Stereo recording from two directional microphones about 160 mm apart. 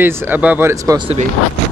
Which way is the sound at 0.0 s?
10° right (ahead or behind).